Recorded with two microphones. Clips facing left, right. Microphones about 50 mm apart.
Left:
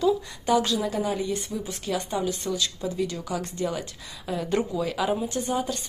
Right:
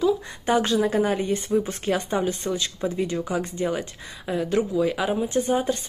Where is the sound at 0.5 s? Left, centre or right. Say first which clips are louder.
Right 2 dB; right.